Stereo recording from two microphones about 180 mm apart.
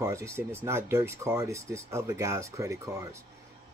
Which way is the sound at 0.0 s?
15° right (ahead or behind).